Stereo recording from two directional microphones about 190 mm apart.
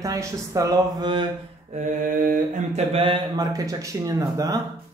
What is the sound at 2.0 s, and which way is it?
Mantra, 45° right (ahead or behind).